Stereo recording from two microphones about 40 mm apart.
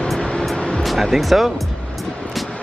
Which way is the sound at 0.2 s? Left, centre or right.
Left.